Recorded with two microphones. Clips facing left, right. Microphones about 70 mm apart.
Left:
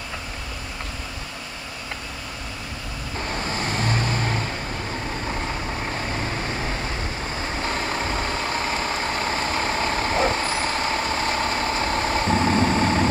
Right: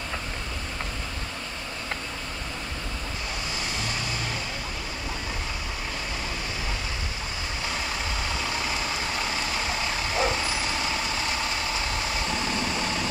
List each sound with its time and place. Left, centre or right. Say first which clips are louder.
3.3 s vehicle: left 8 dB; left
7.6 s vehicle: left 5 dB; left